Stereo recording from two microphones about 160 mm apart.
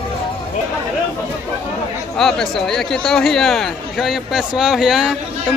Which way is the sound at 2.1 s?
Centre (ahead or behind).